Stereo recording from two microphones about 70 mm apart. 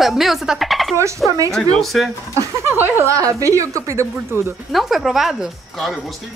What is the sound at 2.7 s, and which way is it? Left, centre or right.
Speech, right.